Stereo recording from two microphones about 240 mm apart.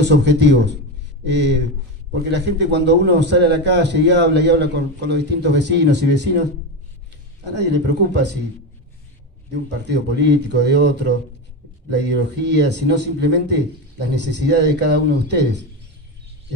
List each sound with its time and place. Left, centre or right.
0.0 s a man's voice: right
7.5 s a man's voice: right
9.7 s a man's voice: right